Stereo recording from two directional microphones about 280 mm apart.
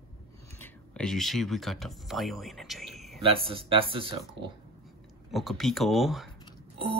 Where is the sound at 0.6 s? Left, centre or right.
Centre.